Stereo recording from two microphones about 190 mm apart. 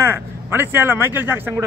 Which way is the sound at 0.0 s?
10° right (ahead or behind).